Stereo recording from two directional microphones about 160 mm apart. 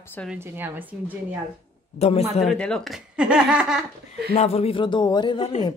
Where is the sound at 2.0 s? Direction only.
40° left (ahead or behind).